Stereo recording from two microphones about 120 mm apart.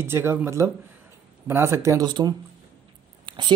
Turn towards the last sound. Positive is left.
turn(degrees=-40)  # may be behind; listen again after turning